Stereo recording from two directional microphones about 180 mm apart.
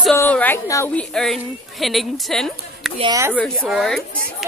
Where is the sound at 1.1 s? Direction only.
5° left (ahead or behind).